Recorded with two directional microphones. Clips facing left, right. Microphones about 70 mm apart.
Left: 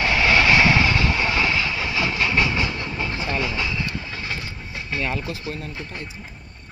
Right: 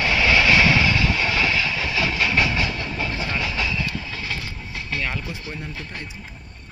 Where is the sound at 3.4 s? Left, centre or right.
Centre.